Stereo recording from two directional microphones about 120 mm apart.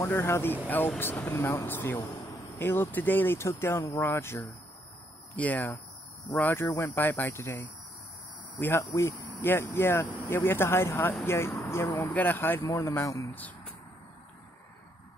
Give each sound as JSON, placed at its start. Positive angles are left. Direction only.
{"t": 0.0, "sound": "speech", "side_deg": 20}
{"t": 13.3, "sound": "speech", "side_deg": 15}